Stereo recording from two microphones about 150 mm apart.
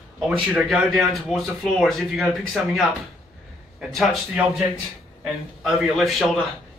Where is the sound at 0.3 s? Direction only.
Centre (ahead or behind).